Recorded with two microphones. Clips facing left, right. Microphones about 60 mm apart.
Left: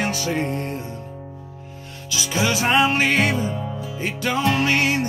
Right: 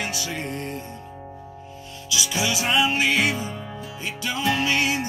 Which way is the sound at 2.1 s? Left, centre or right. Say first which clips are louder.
Left 3 dB; left.